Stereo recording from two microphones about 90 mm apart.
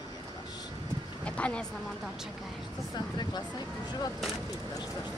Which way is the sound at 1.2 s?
10° left (ahead or behind).